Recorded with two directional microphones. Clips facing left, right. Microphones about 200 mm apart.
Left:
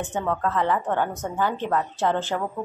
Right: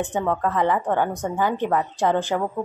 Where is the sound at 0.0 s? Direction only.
15° right (ahead or behind).